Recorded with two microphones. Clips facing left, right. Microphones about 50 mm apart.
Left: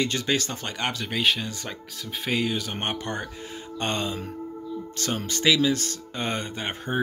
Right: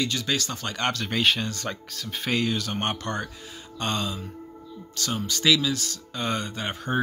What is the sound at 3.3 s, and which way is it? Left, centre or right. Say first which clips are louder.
Speech: left 3 dB; left.